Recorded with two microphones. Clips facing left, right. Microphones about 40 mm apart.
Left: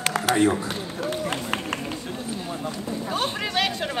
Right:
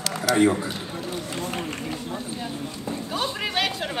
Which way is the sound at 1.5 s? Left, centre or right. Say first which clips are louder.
Left 1 dB; left.